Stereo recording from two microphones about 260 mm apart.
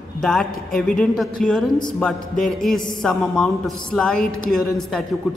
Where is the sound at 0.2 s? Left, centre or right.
Centre.